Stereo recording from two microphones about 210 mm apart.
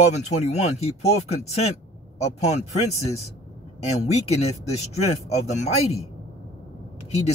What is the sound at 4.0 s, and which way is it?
Speech, 30° left (ahead or behind).